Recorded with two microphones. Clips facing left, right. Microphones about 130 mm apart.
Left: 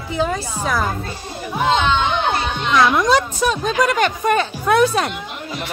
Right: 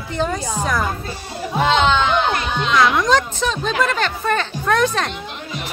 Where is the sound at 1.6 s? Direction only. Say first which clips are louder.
Right 1 dB; 90° right.